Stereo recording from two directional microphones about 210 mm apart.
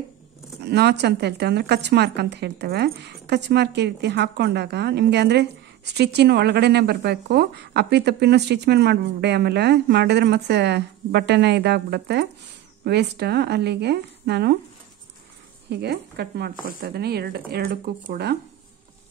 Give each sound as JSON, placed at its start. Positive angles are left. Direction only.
{"t": 0.6, "sound": "a woman's voice", "side_deg": -50}
{"t": 15.7, "sound": "a woman's voice", "side_deg": -50}